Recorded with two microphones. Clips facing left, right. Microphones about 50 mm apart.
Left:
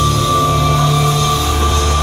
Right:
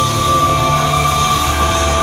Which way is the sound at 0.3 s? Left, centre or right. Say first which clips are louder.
Right 2 dB; right.